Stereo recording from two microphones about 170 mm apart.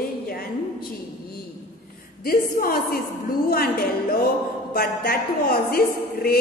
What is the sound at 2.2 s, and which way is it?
A woman's voice, 60° left (ahead or behind).